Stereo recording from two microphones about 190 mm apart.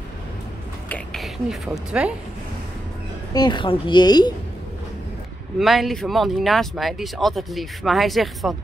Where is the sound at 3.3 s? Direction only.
20° left (ahead or behind).